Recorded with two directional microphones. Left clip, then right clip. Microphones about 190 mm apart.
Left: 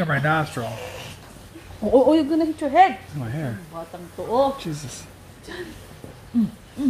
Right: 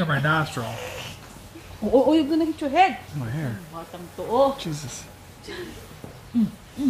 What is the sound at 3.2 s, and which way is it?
Speech, centre (ahead or behind).